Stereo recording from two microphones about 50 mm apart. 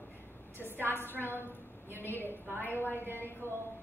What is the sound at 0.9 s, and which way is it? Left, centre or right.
Speech, left.